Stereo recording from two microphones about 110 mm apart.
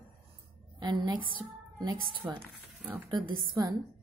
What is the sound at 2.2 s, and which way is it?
Speech, 20° right (ahead or behind).